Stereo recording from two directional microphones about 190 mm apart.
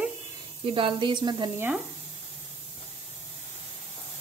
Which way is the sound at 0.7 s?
25° right (ahead or behind).